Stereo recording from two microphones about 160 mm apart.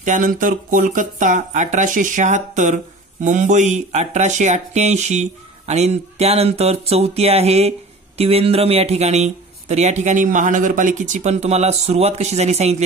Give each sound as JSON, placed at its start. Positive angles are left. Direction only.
{"t": 0.0, "sound": "speech", "side_deg": -55}